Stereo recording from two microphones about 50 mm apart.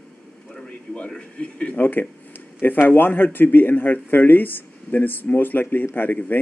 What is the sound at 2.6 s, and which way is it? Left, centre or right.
Speech, left.